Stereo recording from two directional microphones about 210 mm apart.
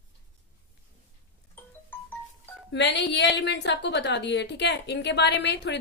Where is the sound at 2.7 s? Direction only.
55° left (ahead or behind).